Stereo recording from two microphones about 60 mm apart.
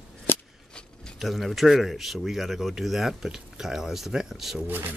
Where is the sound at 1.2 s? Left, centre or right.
Centre.